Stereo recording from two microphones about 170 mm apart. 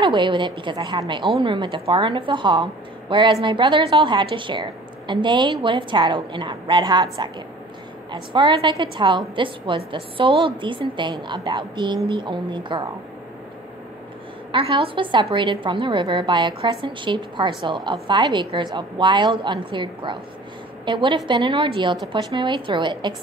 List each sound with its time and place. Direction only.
0.0 s a woman's voice: 30° right (ahead or behind)
14.5 s a woman's voice: 30° right (ahead or behind)